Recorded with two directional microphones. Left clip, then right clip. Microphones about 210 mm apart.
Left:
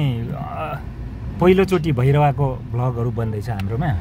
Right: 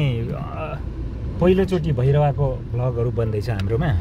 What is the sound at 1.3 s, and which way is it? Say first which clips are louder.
Speech: left 3 dB; 25° left (ahead or behind).